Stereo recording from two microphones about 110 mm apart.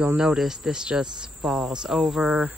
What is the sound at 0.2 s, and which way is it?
Speech, 5° right (ahead or behind).